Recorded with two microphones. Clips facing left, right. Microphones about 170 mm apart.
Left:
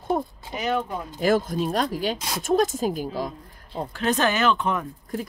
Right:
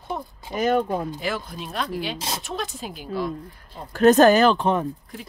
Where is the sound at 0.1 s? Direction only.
50° left (ahead or behind).